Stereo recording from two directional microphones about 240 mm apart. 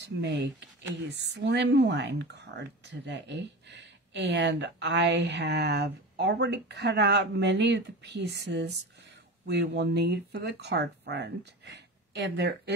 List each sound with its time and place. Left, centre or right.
0.2 s speech: right